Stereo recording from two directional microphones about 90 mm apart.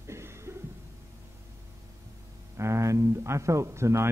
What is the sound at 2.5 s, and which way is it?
Speech, 35° right (ahead or behind).